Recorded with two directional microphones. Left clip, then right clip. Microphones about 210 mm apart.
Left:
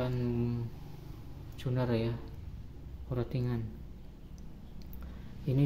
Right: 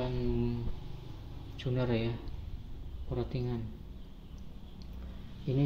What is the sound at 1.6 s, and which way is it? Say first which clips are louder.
Speech: even; 5° left (ahead or behind).